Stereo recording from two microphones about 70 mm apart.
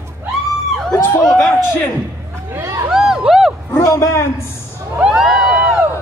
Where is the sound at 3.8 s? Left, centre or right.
Left.